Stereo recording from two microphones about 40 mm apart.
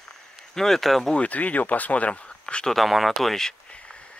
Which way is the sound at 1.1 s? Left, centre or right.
Left.